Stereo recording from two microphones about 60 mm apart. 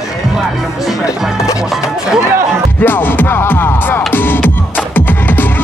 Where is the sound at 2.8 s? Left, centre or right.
Left.